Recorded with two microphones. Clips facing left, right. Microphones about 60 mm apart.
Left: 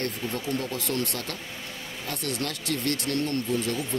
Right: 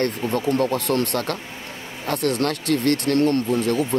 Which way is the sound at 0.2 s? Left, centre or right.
Right.